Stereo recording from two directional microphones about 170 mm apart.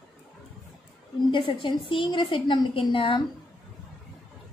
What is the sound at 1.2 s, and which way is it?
A woman's voice, 30° left (ahead or behind).